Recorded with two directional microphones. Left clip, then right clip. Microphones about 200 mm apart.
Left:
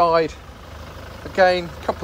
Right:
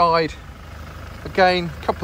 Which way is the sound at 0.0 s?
15° left (ahead or behind).